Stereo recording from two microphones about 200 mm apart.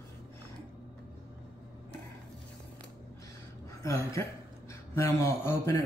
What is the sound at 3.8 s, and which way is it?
A woman's voice, 15° left (ahead or behind).